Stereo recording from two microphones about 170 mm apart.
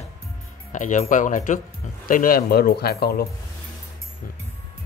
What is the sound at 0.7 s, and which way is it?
Speech, 45° left (ahead or behind).